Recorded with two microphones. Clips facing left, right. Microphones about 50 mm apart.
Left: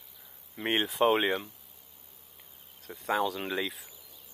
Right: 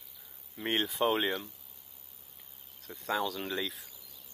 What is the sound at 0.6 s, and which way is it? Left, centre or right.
Speech, centre.